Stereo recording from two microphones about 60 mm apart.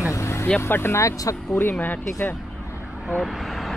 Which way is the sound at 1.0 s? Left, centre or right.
Left.